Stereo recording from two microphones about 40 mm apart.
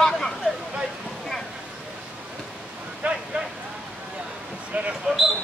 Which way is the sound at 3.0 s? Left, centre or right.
Right.